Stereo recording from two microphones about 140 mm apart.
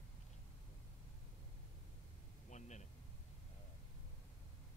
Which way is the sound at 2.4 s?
55° left (ahead or behind).